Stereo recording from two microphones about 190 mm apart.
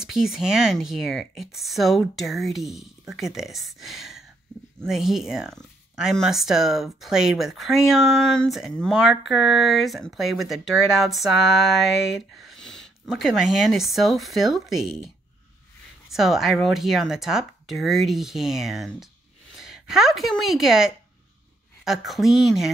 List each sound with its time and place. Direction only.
0.0 s speech: centre (ahead or behind)
16.1 s a woman's voice: centre (ahead or behind)